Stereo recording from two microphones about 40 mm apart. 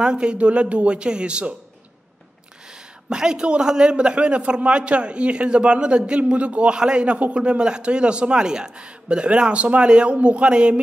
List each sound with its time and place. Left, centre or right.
0.0 s a man's voice: right
3.1 s a man's voice: centre